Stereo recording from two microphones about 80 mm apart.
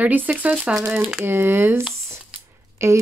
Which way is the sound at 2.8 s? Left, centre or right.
Right.